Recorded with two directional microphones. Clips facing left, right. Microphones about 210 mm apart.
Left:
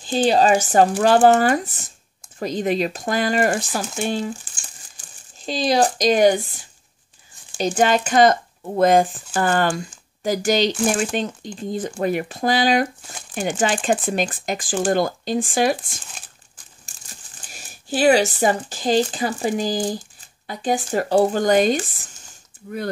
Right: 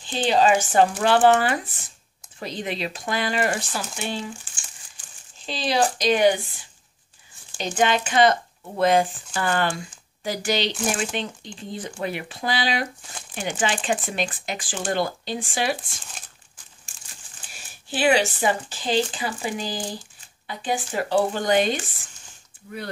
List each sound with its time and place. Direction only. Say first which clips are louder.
0.0 s speech: left 3 dB; 40° left (ahead or behind)
7.5 s speech: left 4 dB; 40° left (ahead or behind)
16.8 s speech: left 4 dB; 40° left (ahead or behind)